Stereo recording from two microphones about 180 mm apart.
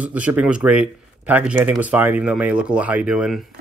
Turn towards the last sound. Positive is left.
turn(degrees=-5)  # may be behind; listen again after turning